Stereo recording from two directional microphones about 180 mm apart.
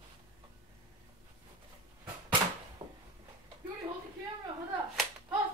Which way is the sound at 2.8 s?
25° right (ahead or behind).